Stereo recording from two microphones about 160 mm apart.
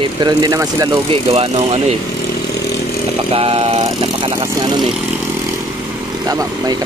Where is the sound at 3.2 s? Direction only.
35° right (ahead or behind).